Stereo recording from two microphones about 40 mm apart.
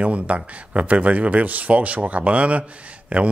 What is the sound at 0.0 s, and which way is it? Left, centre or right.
Speech, right.